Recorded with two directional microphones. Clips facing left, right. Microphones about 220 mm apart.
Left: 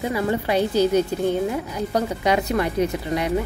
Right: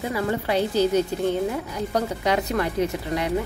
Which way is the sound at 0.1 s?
15° left (ahead or behind).